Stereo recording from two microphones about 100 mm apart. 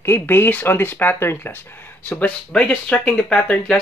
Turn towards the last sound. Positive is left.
turn(degrees=10)  # may be behind; listen again after turning